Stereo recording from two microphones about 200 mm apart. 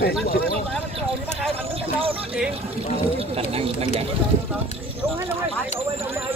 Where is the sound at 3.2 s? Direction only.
30° right (ahead or behind).